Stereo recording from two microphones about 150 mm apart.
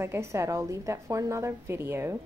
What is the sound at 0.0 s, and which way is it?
A woman's voice, 15° right (ahead or behind).